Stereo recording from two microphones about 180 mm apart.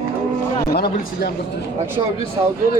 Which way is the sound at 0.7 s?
60° left (ahead or behind).